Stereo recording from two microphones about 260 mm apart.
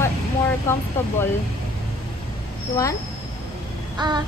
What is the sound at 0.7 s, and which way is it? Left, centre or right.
Speech, centre.